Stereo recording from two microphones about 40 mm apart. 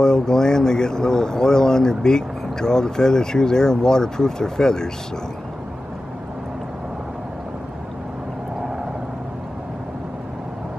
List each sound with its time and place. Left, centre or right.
0.0 s speech: centre